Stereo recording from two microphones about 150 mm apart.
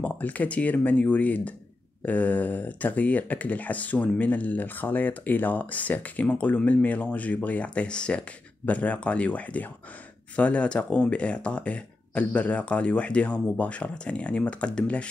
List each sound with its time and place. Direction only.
0.0 s speech: 10° left (ahead or behind)